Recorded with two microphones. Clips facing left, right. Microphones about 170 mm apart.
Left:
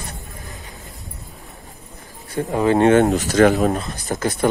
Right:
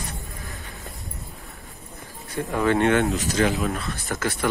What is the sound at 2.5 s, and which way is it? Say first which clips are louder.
Speech: left 5 dB; 30° left (ahead or behind).